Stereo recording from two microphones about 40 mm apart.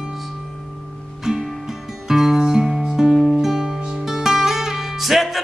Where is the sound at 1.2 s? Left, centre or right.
Centre.